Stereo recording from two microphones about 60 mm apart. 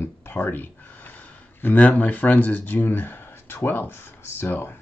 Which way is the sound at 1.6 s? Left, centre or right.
Left.